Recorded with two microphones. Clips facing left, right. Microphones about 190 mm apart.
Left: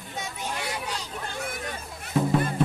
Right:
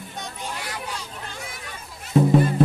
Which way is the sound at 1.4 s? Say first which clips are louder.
Left 5 dB; 55° left (ahead or behind).